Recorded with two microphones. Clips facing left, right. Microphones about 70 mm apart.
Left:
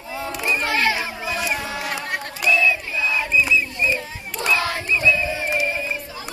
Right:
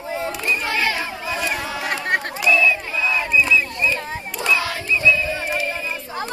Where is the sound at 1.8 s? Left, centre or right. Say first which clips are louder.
Right 5 dB; right.